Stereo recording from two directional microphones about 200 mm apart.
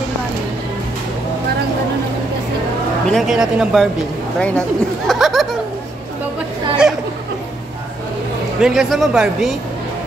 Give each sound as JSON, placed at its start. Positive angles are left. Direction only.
{"t": 3.1, "sound": "speech", "side_deg": 0}
{"t": 4.4, "sound": "a sound", "side_deg": 5}
{"t": 8.5, "sound": "speech", "side_deg": 0}